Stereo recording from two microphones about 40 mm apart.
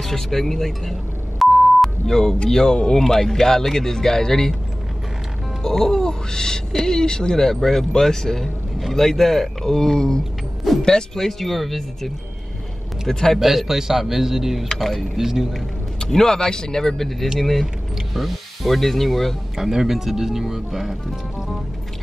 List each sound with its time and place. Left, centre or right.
0.0 s speech: centre
1.4 s a sound: centre
2.0 s speech: centre
5.6 s speech: centre
11.1 s speech: centre
13.1 s speech: centre
13.4 s speech: centre
14.8 s speech: centre
15.1 s speech: centre
15.5 s speech: centre
19.5 s speech: centre